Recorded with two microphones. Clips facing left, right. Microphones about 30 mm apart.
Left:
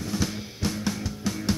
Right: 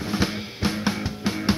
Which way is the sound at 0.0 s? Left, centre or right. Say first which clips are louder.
Right 4 dB; right.